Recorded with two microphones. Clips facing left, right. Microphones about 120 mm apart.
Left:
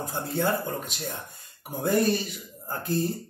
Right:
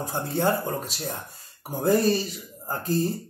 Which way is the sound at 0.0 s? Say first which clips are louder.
Right 3 dB; 40° right (ahead or behind).